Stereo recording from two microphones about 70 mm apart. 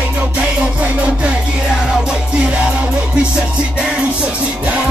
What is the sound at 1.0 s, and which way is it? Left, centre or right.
Music, centre.